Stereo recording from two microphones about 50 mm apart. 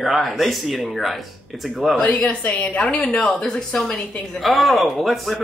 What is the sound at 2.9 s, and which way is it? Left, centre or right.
Speech, left.